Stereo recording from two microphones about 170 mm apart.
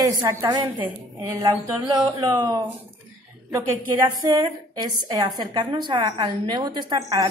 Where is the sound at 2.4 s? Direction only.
25° right (ahead or behind).